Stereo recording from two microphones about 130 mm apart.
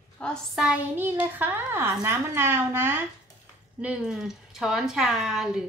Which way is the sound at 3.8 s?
5° right (ahead or behind).